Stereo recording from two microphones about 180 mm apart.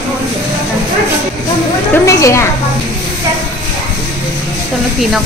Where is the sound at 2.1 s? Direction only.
15° left (ahead or behind).